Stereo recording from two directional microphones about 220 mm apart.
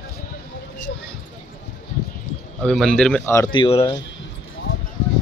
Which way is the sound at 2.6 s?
Centre (ahead or behind).